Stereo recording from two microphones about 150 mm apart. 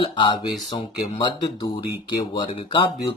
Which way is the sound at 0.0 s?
30° left (ahead or behind).